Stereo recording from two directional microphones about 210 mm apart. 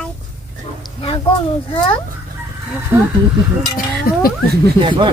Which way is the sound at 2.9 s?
10° right (ahead or behind).